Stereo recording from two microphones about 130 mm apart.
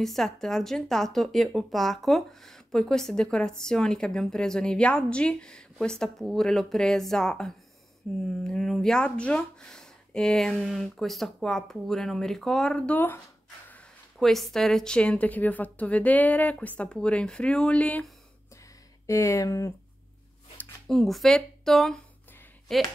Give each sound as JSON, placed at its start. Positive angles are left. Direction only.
{"t": 0.0, "sound": "speech", "side_deg": 5}
{"t": 14.1, "sound": "a woman's voice", "side_deg": 0}
{"t": 19.0, "sound": "speech", "side_deg": 25}
{"t": 20.8, "sound": "speech", "side_deg": 0}